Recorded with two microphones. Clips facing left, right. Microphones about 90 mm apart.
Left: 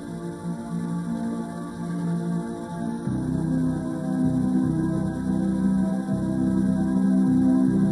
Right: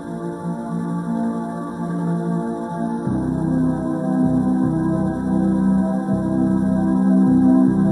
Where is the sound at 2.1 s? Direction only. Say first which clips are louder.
Right 6 dB; 40° right (ahead or behind).